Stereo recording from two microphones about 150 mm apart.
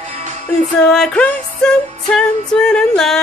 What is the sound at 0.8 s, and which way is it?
Music, 5° left (ahead or behind).